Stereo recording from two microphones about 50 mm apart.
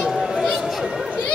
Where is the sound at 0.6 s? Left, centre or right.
Centre.